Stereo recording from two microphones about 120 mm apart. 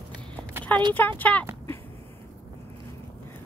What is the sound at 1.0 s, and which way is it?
Speech, 15° left (ahead or behind).